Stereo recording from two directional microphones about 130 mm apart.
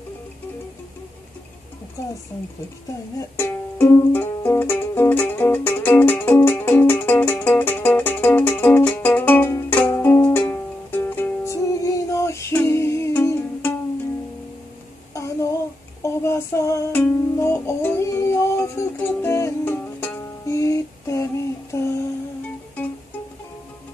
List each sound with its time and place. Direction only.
2.0 s speech: 25° left (ahead or behind)
3.2 s music: 20° left (ahead or behind)
15.1 s child singing: 25° left (ahead or behind)
16.0 s female singing: 20° left (ahead or behind)
16.9 s music: 15° left (ahead or behind)